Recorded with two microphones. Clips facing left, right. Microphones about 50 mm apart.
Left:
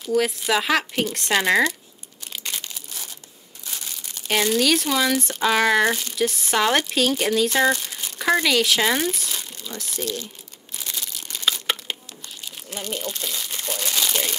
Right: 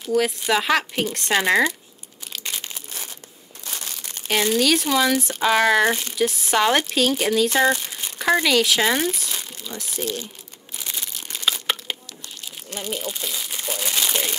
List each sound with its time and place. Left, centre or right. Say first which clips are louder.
0.1 s speech: right 1 dB; centre
2.6 s crumpling: right 2 dB; right
4.3 s speech: even; centre
10.8 s a sound: even; centre
11.6 s crumpling: even; centre